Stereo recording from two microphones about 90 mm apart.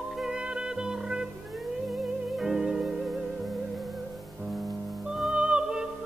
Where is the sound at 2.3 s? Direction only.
5° right (ahead or behind).